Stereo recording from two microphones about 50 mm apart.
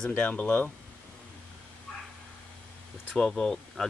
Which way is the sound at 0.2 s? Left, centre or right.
Left.